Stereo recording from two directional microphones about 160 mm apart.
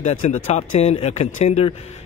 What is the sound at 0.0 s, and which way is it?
Speech, 45° left (ahead or behind).